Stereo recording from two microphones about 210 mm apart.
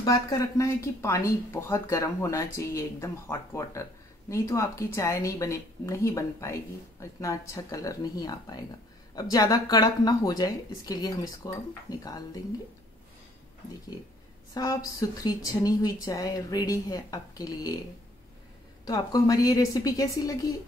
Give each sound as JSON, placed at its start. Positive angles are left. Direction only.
{"t": 0.0, "sound": "speech", "side_deg": 15}
{"t": 14.5, "sound": "a woman's voice", "side_deg": 15}
{"t": 18.9, "sound": "speech", "side_deg": 15}